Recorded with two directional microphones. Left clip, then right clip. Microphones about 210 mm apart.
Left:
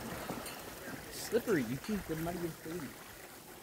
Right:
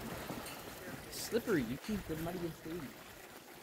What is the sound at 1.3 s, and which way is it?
Speech, 10° right (ahead or behind).